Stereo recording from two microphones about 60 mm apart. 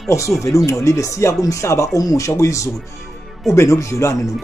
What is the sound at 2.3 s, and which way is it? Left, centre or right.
Speech, left.